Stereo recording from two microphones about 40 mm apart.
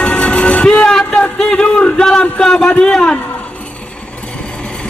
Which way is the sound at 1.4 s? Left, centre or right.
Centre.